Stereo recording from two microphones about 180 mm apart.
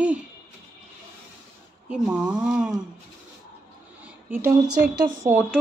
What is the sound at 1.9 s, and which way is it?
Speech, 5° right (ahead or behind).